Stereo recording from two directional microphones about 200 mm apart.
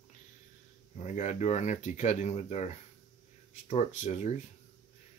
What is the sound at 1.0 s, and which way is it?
Speech, 35° left (ahead or behind).